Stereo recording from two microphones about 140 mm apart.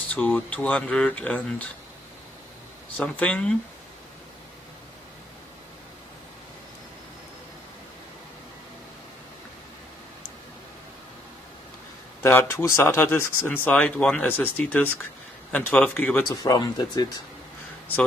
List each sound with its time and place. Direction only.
0.1 s speech: 10° left (ahead or behind)
3.0 s speech: 10° left (ahead or behind)
12.2 s speech: 15° left (ahead or behind)
16.3 s speech: 30° left (ahead or behind)